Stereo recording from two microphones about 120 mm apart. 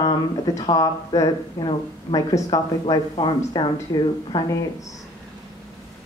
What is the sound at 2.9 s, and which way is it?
A woman's voice, 40° left (ahead or behind).